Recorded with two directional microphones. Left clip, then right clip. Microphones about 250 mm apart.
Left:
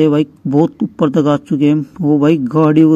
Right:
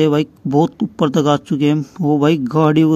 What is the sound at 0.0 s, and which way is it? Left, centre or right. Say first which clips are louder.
Speech: left 2 dB; centre.